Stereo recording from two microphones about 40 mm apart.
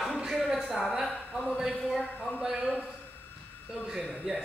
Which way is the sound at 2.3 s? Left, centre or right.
Centre.